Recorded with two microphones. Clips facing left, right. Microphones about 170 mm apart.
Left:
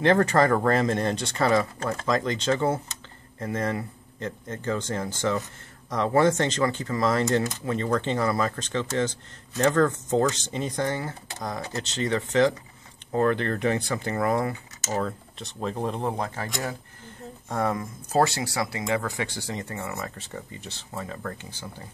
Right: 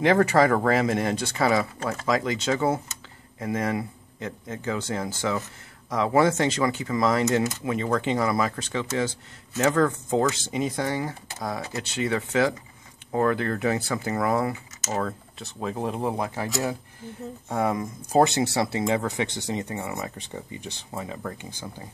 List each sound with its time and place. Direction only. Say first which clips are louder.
0.0 s speech: right 1 dB; 10° right (ahead or behind)
17.7 s speech: right 5 dB; 20° right (ahead or behind)